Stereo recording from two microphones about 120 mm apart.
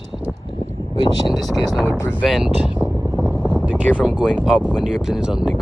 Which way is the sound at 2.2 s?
Centre (ahead or behind).